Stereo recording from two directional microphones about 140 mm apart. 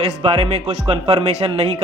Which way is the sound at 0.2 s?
45° right (ahead or behind).